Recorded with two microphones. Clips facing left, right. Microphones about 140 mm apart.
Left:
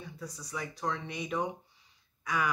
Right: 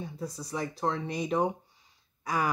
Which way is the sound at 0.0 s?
30° right (ahead or behind).